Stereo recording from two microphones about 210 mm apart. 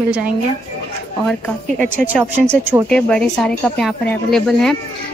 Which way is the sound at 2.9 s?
5° left (ahead or behind).